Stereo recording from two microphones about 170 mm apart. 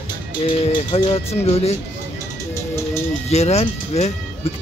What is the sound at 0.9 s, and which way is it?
Speech, 35° left (ahead or behind).